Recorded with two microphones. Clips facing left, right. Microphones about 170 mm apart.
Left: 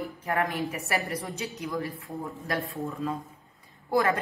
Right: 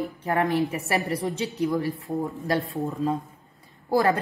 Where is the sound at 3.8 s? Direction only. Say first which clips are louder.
Right 3 dB; 35° right (ahead or behind).